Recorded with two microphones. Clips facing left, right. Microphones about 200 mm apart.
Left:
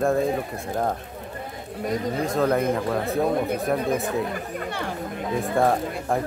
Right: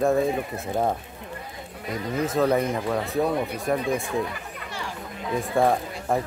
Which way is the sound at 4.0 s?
45° left (ahead or behind).